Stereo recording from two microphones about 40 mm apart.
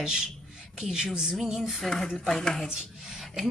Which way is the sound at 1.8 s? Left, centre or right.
Centre.